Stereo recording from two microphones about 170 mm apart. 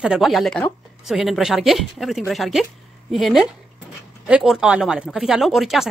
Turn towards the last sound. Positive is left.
turn(degrees=0)  # may be behind; listen again after turning